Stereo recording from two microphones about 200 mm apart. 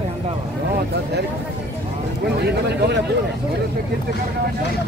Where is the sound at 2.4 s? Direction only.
55° right (ahead or behind).